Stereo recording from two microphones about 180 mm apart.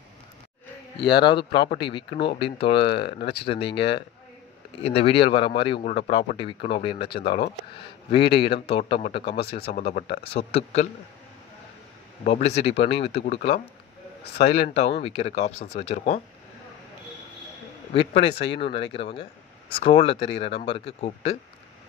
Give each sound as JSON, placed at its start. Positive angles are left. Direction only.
{"t": 1.2, "sound": "speech", "side_deg": 25}
{"t": 3.1, "sound": "speech", "side_deg": 65}
{"t": 3.4, "sound": "speech", "side_deg": 30}
{"t": 4.8, "sound": "speech", "side_deg": 30}
{"t": 9.8, "sound": "speech", "side_deg": 45}
{"t": 10.2, "sound": "speech", "side_deg": 35}
{"t": 12.3, "sound": "speech", "side_deg": 35}
{"t": 17.9, "sound": "speech", "side_deg": 30}